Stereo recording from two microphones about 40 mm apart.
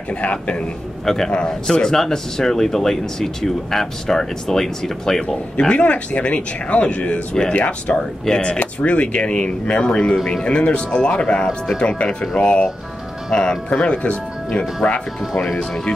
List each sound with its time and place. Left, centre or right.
0.1 s speech: left
1.0 s a man's voice: centre
1.3 s speech: left
5.7 s speech: left
13.7 s speech: left
14.5 s speech: centre